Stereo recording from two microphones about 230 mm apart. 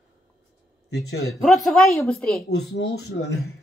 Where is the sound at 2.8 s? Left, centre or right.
Left.